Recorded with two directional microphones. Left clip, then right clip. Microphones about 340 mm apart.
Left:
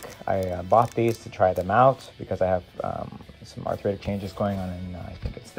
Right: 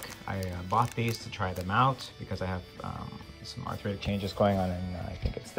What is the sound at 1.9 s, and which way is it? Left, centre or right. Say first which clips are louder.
Speech: left 10 dB; centre.